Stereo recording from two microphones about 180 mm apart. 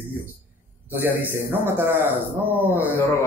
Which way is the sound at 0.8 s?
10° right (ahead or behind).